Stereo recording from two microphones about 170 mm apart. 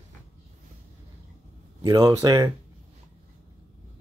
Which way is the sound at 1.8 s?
20° right (ahead or behind).